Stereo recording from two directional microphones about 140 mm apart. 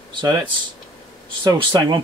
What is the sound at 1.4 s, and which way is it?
Speech, 30° right (ahead or behind).